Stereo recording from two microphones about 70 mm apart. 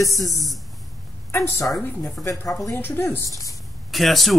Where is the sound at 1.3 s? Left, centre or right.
Left.